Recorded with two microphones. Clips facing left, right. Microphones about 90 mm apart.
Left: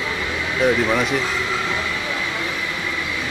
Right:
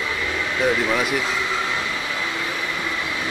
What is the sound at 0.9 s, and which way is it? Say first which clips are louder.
Speech: left 2 dB; 5° right (ahead or behind).